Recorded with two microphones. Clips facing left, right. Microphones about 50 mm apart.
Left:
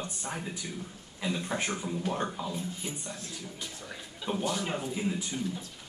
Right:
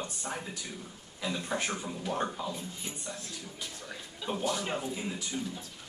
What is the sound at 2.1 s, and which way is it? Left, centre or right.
Speech, centre.